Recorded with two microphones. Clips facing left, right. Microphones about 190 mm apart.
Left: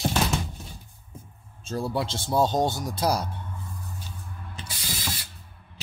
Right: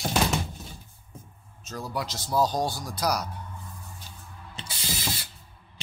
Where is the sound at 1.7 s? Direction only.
30° left (ahead or behind).